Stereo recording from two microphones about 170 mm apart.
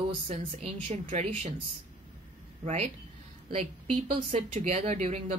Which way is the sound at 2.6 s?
40° right (ahead or behind).